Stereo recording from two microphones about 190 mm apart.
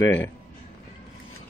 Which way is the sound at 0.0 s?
80° left.